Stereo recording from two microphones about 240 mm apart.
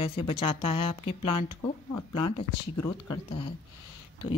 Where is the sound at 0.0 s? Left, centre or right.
Left.